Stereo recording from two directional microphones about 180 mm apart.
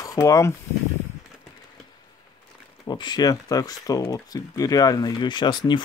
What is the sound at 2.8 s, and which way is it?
Speech, 25° left (ahead or behind).